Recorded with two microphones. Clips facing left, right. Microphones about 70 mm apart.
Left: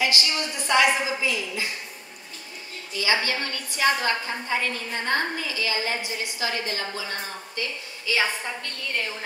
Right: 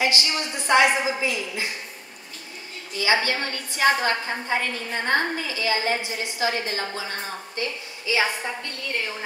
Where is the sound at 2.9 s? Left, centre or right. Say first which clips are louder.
Right 2 dB; right.